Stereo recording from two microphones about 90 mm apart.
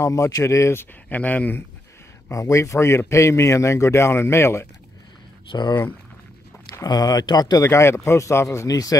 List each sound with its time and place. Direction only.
0.0 s speech: 35° left (ahead or behind)
1.0 s speech: 20° left (ahead or behind)
2.3 s speech: 35° left (ahead or behind)
5.5 s speech: 55° left (ahead or behind)
6.8 s speech: 45° left (ahead or behind)
7.6 s speech: 30° left (ahead or behind)